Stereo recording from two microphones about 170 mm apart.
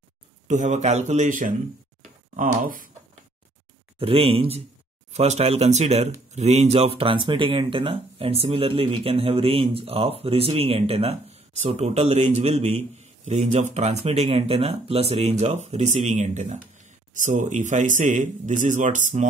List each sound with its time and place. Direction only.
0.5 s speech: 45° right (ahead or behind)
4.0 s speech: 35° right (ahead or behind)